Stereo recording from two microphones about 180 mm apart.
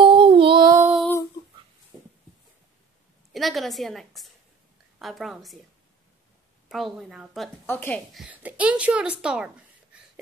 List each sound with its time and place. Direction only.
0.0 s music: 30° right (ahead or behind)
3.3 s a woman's voice: centre (ahead or behind)
6.7 s a woman's voice: centre (ahead or behind)
7.6 s speech: 10° left (ahead or behind)
8.1 s speech: 5° right (ahead or behind)